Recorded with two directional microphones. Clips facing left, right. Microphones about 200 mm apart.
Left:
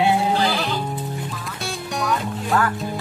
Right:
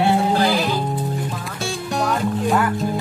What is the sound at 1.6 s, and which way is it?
Music, centre (ahead or behind).